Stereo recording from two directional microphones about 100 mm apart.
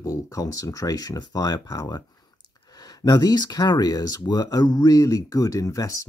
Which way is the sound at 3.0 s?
40° left (ahead or behind).